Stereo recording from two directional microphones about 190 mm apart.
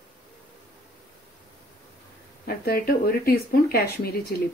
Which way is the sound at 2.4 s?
50° left (ahead or behind).